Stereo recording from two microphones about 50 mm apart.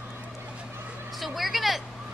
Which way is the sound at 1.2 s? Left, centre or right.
Centre.